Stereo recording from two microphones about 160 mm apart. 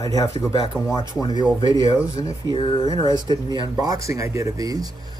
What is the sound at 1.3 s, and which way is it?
Speech, 30° right (ahead or behind).